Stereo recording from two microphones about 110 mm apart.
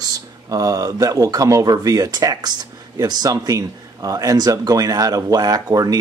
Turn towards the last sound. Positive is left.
turn(degrees=-35)  # may be behind; listen again after turning